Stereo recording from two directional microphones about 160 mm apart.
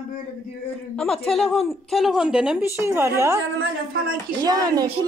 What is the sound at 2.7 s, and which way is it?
Speech, 15° right (ahead or behind).